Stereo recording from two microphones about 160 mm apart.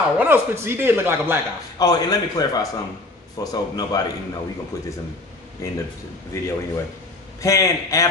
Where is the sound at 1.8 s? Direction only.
25° left (ahead or behind).